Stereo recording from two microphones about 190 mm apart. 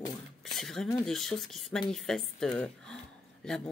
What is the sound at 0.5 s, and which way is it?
Speech, centre (ahead or behind).